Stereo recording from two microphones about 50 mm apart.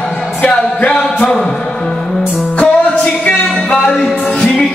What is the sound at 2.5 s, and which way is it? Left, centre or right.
Music, left.